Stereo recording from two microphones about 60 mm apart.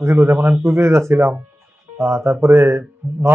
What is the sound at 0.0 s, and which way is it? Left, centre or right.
Speech, right.